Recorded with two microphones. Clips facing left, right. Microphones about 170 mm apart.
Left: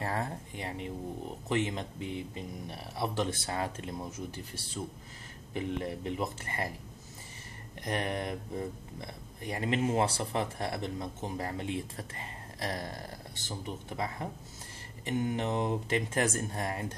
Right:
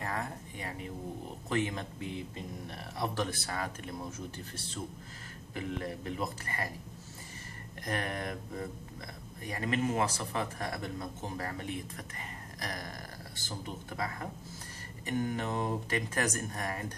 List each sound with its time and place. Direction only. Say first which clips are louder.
0.0 s a sound: left 3 dB; 30° left (ahead or behind)
1.5 s speech: left 1 dB; 20° left (ahead or behind)
3.4 s speech: left 3 dB; 25° left (ahead or behind)
5.5 s speech: left 3 dB; 20° left (ahead or behind)
7.8 s speech: left 2 dB; 25° left (ahead or behind)